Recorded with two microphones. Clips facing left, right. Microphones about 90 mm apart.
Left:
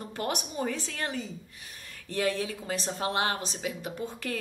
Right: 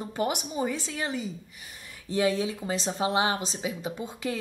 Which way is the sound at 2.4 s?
20° right (ahead or behind).